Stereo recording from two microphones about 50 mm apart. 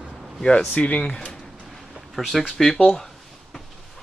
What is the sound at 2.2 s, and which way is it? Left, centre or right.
Speech, centre.